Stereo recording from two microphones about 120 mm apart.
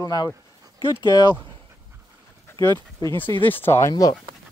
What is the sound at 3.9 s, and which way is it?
Speech, 35° left (ahead or behind).